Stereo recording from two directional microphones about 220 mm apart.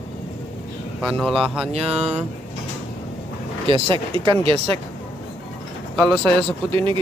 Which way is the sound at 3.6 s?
25° right (ahead or behind).